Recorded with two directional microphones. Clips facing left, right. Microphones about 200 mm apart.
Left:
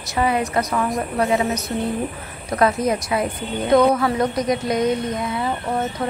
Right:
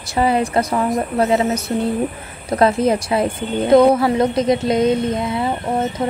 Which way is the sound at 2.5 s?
30° right (ahead or behind).